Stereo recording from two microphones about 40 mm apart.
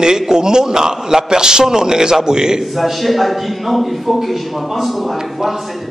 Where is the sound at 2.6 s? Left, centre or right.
Centre.